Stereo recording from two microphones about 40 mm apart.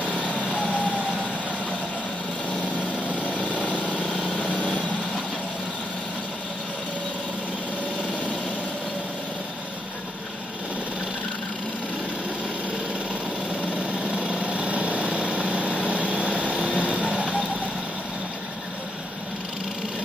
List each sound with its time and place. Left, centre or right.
0.4 s vehicle: right
0.7 s vehicle: left
3.3 s vehicle: left
14.3 s vehicle: right